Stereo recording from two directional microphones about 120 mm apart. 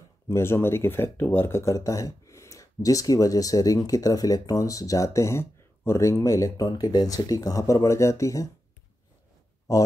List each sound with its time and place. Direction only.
0.3 s speech: 20° left (ahead or behind)
9.7 s speech: 30° left (ahead or behind)